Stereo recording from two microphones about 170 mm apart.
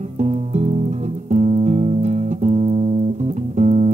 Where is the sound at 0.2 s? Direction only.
40° right (ahead or behind).